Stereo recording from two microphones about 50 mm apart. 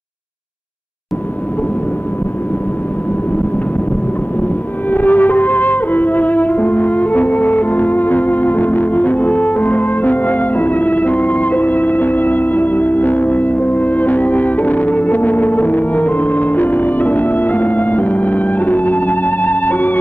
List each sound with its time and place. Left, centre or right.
4.9 s music: left